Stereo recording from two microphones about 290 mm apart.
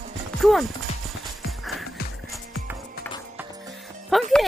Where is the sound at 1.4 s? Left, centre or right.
Centre.